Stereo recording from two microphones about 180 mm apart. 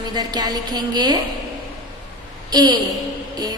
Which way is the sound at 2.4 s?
20° right (ahead or behind).